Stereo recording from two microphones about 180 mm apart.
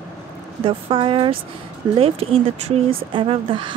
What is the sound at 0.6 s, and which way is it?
A woman's voice, 30° right (ahead or behind).